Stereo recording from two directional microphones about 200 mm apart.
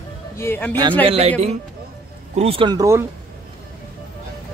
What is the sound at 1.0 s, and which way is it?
Speech, 30° right (ahead or behind).